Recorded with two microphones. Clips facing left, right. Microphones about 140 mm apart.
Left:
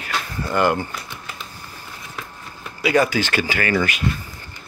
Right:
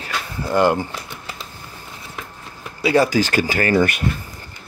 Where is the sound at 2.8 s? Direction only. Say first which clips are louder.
Right 2 dB; 30° right (ahead or behind).